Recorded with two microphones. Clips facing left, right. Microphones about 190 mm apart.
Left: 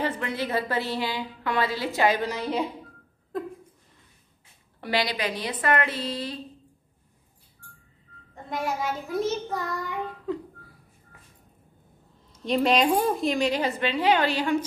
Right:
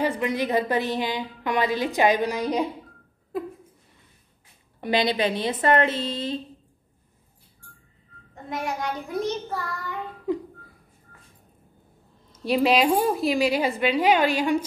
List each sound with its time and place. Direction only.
0.0 s a woman's voice: 15° right (ahead or behind)
3.3 s a sound: 5° right (ahead or behind)
4.7 s a woman's voice: 20° right (ahead or behind)
8.5 s a child's voice: centre (ahead or behind)
9.5 s child singing: 20° left (ahead or behind)
10.3 s a sound: 15° right (ahead or behind)
12.4 s a woman's voice: 5° right (ahead or behind)